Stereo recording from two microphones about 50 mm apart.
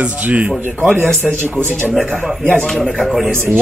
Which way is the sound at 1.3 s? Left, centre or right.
Right.